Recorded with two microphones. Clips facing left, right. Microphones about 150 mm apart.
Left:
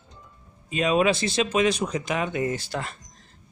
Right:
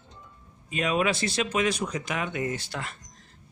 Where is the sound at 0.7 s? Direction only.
25° left (ahead or behind).